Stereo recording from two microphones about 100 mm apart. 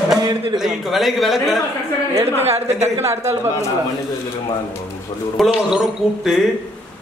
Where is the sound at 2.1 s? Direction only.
25° right (ahead or behind).